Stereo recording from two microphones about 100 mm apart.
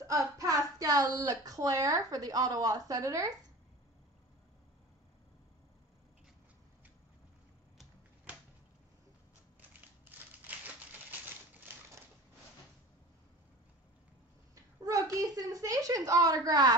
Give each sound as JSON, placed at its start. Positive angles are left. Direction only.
{"t": 0.0, "sound": "speech", "side_deg": -35}
{"t": 10.5, "sound": "typewriter", "side_deg": -15}
{"t": 14.5, "sound": "speech", "side_deg": -35}